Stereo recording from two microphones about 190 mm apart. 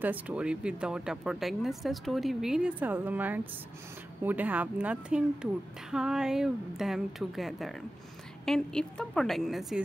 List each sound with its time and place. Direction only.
0.0 s a woman's voice: 5° right (ahead or behind)